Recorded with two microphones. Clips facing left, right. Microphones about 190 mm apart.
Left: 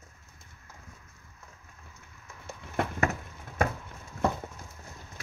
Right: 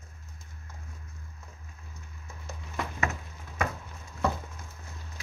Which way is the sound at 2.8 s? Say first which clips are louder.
Left 5 dB; 55° left (ahead or behind).